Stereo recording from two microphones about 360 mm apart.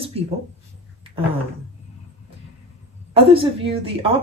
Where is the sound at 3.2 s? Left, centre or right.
Centre.